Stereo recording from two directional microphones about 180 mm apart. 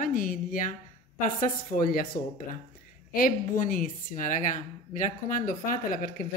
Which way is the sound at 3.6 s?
50° left (ahead or behind).